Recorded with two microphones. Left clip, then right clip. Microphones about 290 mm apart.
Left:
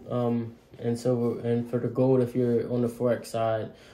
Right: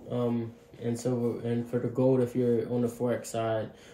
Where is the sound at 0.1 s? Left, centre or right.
Centre.